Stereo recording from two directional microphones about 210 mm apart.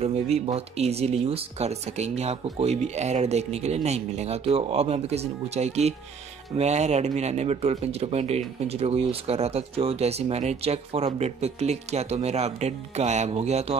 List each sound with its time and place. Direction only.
0.0 s speech: 30° right (ahead or behind)